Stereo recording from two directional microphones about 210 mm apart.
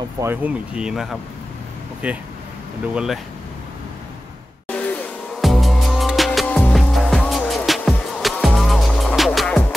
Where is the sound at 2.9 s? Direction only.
5° right (ahead or behind).